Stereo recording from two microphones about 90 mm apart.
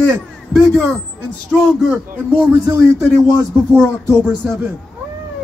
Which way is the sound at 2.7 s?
35° right (ahead or behind).